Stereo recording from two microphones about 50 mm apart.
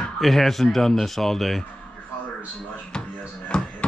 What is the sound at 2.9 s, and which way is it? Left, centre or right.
Music, centre.